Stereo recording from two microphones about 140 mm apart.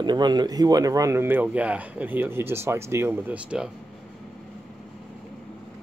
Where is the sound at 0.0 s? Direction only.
30° right (ahead or behind); by 3.7 s 5° right (ahead or behind).